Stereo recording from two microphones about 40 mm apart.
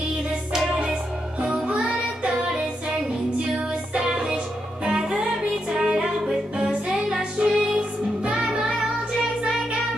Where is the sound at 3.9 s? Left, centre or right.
Centre.